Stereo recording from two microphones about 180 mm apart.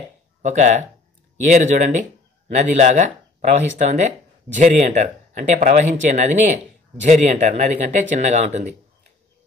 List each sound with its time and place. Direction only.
0.4 s speech: 40° right (ahead or behind)